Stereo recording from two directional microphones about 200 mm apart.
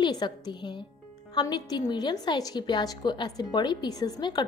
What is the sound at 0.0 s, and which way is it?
A woman's voice, 20° left (ahead or behind).